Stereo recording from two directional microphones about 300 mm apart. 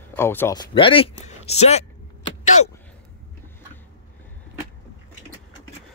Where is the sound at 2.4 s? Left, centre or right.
Left.